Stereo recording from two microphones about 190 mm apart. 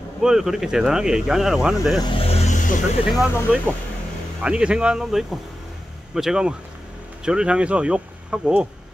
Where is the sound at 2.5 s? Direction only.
40° left (ahead or behind).